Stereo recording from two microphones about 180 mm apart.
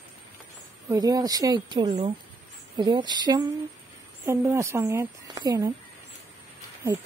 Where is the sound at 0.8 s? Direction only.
20° right (ahead or behind).